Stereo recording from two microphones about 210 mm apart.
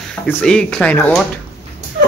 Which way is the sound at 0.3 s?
5° left (ahead or behind).